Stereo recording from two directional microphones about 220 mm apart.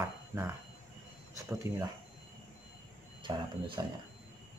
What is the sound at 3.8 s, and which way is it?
Speech, 15° right (ahead or behind).